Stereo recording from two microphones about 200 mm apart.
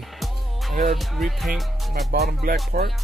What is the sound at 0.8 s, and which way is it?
Speech, centre (ahead or behind).